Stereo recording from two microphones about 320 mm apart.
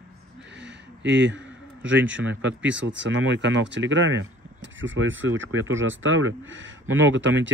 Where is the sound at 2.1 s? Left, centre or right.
Right.